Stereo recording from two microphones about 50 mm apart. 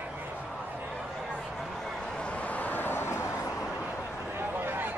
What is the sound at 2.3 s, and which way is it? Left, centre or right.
Vehicle, left.